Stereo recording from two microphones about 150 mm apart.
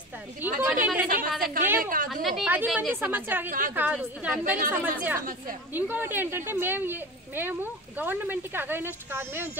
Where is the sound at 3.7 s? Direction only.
10° right (ahead or behind).